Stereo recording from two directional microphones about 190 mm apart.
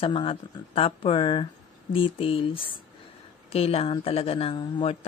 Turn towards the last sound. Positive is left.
turn(degrees=30)  # may be behind; listen again after turning